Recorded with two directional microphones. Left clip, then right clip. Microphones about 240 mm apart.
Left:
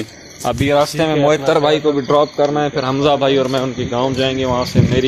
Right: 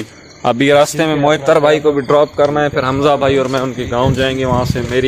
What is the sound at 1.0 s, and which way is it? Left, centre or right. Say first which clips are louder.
A man's voice: right 1 dB; centre.